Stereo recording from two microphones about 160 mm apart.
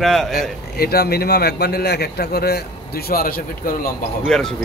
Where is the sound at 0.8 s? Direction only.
75° left (ahead or behind).